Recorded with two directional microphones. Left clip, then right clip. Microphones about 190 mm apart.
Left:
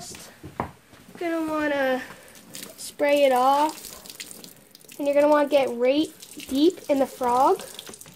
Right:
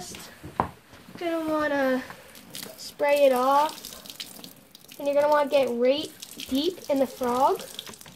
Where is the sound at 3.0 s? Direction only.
45° left (ahead or behind).